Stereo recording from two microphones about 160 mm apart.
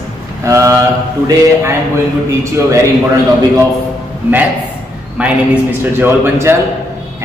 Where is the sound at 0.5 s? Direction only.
20° right (ahead or behind).